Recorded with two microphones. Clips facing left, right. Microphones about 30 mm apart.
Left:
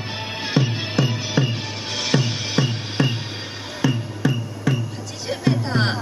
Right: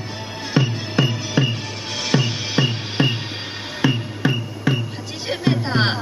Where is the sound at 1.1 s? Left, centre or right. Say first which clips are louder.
Right 1 dB; centre.